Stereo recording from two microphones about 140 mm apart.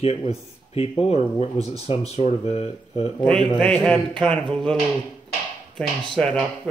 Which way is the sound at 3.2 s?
5° left (ahead or behind).